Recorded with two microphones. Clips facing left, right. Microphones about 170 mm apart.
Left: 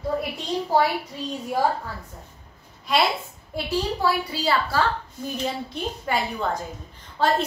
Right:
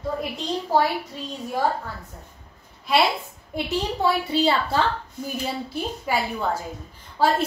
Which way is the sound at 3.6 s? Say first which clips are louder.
Even; 25° right (ahead or behind).